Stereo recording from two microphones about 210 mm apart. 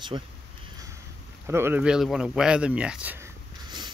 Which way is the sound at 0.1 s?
20° right (ahead or behind).